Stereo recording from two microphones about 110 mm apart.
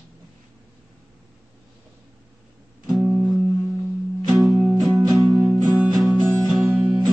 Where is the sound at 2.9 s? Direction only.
5° right (ahead or behind).